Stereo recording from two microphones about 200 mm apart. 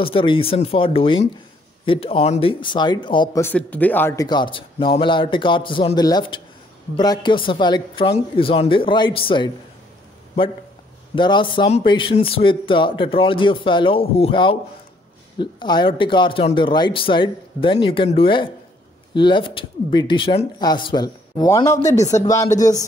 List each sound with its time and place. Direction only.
0.0 s speech: 25° left (ahead or behind)
3.4 s speech: 10° left (ahead or behind); by 9.5 s 25° left (ahead or behind)
11.1 s speech: 25° left (ahead or behind)
21.9 s speech: 35° left (ahead or behind)
22.2 s speech: 15° left (ahead or behind)